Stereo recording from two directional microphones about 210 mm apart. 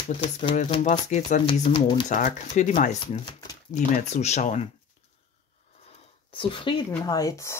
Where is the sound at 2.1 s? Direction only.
35° left (ahead or behind).